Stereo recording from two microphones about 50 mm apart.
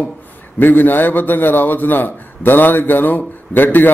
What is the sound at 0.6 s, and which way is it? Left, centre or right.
A man's voice, left.